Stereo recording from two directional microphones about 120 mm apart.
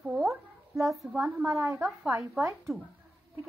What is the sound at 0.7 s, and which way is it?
A woman's voice, 25° right (ahead or behind).